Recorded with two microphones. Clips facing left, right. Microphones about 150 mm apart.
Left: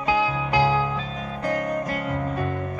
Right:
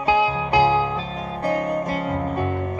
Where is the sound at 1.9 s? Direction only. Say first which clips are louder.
Right 3 dB; 35° right (ahead or behind).